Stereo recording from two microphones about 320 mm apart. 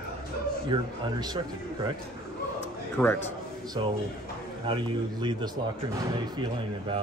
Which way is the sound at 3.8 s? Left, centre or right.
Centre.